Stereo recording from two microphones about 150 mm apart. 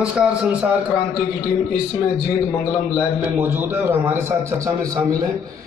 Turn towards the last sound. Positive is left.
turn(degrees=-15)  # may be behind; listen again after turning